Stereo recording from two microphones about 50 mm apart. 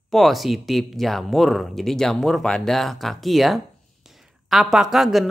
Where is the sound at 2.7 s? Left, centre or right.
Centre.